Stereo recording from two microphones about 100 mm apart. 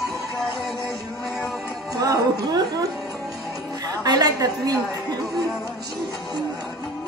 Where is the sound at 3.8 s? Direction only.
40° right (ahead or behind).